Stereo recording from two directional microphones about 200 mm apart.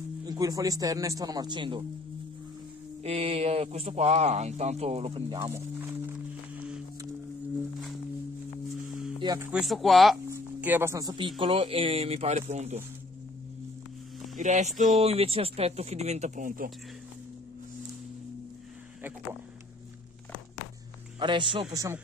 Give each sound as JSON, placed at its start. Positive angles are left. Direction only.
{"t": 0.2, "sound": "speech", "side_deg": -20}
{"t": 3.0, "sound": "speech", "side_deg": -30}
{"t": 5.5, "sound": "speech", "side_deg": -15}
{"t": 9.2, "sound": "speech", "side_deg": -20}
{"t": 9.5, "sound": "speech", "side_deg": 0}
{"t": 10.3, "sound": "speech", "side_deg": -10}
{"t": 14.3, "sound": "speech", "side_deg": -35}
{"t": 21.2, "sound": "speech", "side_deg": -25}